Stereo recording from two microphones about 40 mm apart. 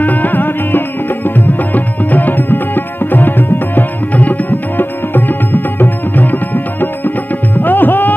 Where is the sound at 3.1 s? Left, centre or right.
Left.